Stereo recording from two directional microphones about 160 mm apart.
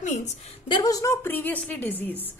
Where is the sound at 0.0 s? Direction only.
50° left (ahead or behind).